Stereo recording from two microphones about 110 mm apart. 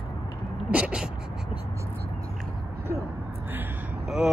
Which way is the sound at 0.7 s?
10° right (ahead or behind).